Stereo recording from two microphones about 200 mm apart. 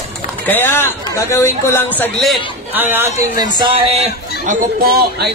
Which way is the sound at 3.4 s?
25° right (ahead or behind).